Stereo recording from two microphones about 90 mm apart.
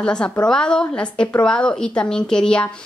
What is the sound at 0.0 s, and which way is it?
A woman's voice, 10° left (ahead or behind).